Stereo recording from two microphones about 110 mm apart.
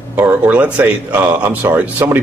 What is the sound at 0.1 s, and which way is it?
Speech, 15° right (ahead or behind).